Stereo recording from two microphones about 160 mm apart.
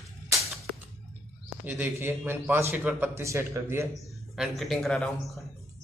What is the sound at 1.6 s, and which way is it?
Speech, 10° right (ahead or behind).